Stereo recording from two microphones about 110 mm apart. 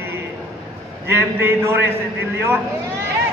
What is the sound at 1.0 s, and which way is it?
A man's voice, 20° right (ahead or behind).